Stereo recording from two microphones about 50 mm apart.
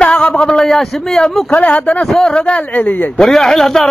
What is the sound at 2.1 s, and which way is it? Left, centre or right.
Speech, centre.